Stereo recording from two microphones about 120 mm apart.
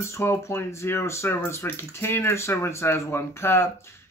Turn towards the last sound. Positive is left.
turn(degrees=20)  # may be behind; listen again after turning